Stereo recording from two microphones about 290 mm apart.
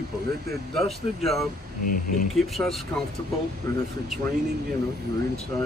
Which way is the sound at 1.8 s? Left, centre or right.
Left.